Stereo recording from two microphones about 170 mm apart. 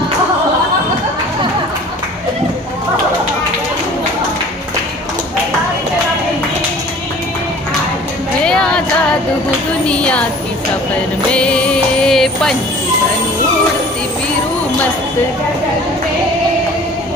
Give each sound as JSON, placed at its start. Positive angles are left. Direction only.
{"t": 8.5, "sound": "music", "side_deg": 5}
{"t": 9.8, "sound": "a sound", "side_deg": 5}
{"t": 11.3, "sound": "music", "side_deg": 5}